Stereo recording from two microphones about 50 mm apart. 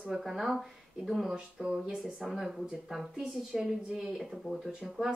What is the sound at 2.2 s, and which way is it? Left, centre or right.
Speech, centre.